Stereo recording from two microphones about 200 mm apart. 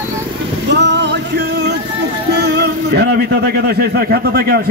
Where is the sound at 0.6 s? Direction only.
60° right (ahead or behind).